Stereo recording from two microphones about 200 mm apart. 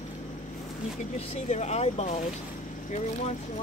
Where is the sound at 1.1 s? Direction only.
35° left (ahead or behind).